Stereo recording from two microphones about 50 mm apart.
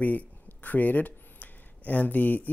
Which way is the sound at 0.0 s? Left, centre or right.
Left.